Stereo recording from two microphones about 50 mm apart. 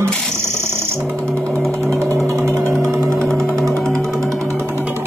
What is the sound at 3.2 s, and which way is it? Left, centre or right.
Music, centre.